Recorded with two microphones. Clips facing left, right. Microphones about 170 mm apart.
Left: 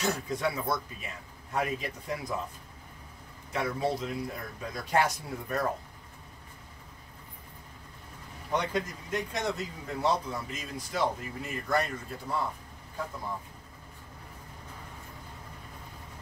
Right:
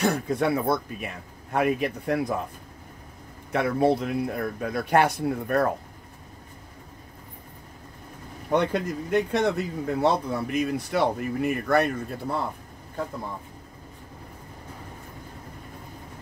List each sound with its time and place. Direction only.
0.0 s speech: 55° right (ahead or behind)
3.5 s speech: 60° right (ahead or behind)
8.5 s speech: 60° right (ahead or behind)